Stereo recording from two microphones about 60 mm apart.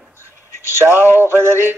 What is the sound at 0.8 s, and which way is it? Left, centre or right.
Speech, right.